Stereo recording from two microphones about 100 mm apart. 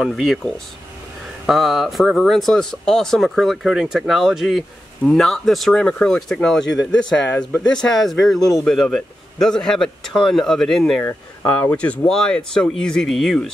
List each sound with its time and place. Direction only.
0.0 s speech: centre (ahead or behind)
8.4 s speech: 35° left (ahead or behind)
8.6 s speech: 5° left (ahead or behind)
11.1 s speech: 25° left (ahead or behind)
11.7 s speech: 15° left (ahead or behind)